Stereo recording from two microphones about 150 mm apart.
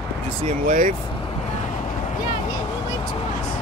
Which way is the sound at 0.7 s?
65° right (ahead or behind).